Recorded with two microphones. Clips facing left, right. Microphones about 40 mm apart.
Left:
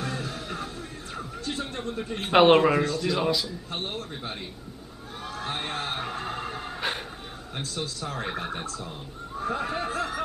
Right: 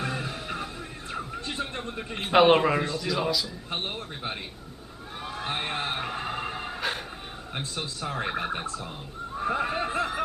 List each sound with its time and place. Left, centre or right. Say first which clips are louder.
0.0 s music: right 1 dB; right
2.2 s a man's voice: left 1 dB; centre
3.7 s a man's voice: right 1 dB; right
5.2 s a sound: right 1 dB; right
7.5 s a man's voice: left 1 dB; right
9.4 s snicker: right 2 dB; centre